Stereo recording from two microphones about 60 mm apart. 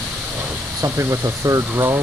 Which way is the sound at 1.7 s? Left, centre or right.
Right.